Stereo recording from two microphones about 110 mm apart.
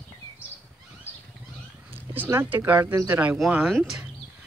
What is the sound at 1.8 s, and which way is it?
Cat, 15° right (ahead or behind).